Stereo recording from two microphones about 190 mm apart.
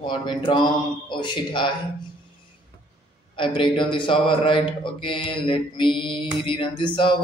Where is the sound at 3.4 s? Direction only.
25° left (ahead or behind).